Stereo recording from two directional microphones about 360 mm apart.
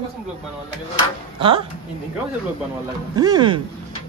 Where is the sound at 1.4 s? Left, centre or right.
Centre.